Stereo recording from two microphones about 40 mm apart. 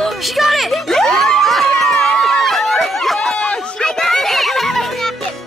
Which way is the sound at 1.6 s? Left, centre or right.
Centre.